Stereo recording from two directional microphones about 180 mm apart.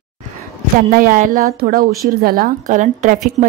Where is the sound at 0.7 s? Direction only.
45° right (ahead or behind).